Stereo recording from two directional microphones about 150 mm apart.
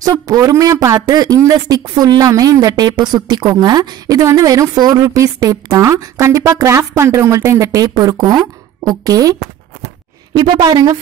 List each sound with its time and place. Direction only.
0.0 s speech: 25° right (ahead or behind)